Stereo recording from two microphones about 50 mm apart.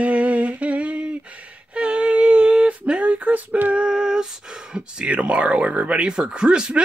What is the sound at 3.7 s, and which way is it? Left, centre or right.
Female singing, centre.